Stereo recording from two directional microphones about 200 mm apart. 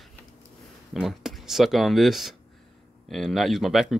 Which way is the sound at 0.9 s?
Centre (ahead or behind).